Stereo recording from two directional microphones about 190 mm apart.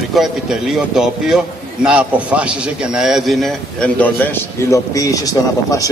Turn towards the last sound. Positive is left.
turn(degrees=20)  # may be behind; listen again after turning